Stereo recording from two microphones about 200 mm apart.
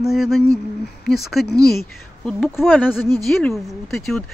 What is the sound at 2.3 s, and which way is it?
Speech, 5° left (ahead or behind).